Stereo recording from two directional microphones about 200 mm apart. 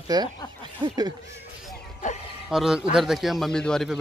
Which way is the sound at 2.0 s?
40° left (ahead or behind).